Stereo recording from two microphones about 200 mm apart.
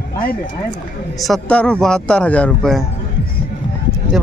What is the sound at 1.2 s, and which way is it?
Speech, 5° left (ahead or behind).